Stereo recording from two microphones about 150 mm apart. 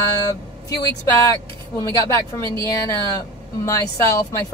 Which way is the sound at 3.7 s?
20° left (ahead or behind).